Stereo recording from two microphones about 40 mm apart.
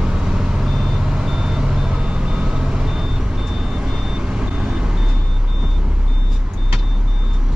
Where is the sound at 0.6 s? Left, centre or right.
Centre.